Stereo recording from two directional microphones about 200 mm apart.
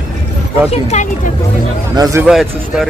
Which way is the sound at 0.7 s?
35° left (ahead or behind).